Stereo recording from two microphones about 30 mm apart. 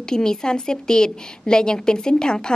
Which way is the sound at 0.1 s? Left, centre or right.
Left.